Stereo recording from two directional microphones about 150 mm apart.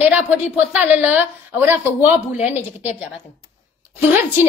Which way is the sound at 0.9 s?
10° right (ahead or behind).